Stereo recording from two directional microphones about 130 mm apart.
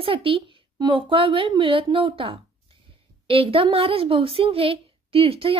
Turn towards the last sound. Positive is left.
turn(degrees=-45)  # may be behind; listen again after turning